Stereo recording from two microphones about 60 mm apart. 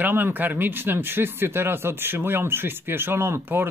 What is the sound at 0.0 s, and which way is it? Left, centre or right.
Speech, right.